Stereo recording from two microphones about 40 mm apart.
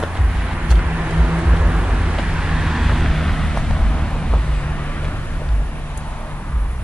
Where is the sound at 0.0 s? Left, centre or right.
Centre.